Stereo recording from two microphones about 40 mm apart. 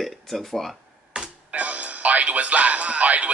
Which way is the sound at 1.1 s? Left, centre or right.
Right.